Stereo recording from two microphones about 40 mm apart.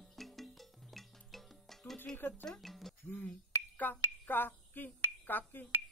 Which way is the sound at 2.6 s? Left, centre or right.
Centre.